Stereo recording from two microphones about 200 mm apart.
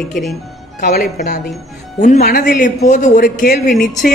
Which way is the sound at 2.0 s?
40° left (ahead or behind).